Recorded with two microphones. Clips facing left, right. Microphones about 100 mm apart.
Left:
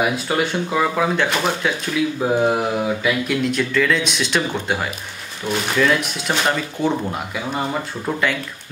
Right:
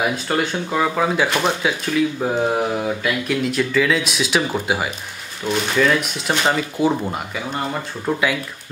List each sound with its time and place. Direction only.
0.0 s speech: centre (ahead or behind)